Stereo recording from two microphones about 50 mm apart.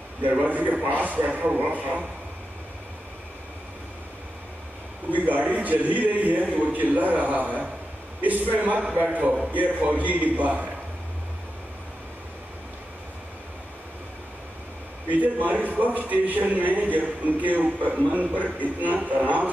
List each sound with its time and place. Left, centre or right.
0.3 s a man's voice: right
5.1 s a man's voice: right
15.0 s a man's voice: right